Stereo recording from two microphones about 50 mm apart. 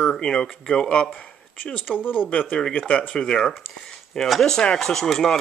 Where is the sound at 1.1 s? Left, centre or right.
Left.